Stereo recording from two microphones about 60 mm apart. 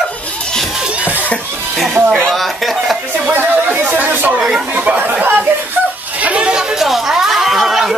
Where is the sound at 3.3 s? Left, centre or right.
Right.